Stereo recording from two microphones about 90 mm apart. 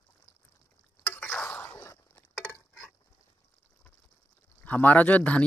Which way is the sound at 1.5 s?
20° left (ahead or behind).